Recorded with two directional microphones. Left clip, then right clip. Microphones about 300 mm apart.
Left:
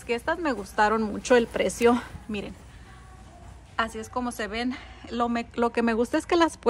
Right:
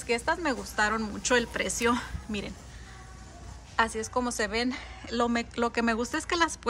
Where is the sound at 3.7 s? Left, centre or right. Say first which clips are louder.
Right 2 dB; centre.